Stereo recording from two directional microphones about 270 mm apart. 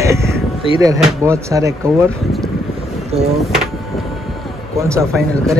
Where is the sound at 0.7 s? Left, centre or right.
Centre.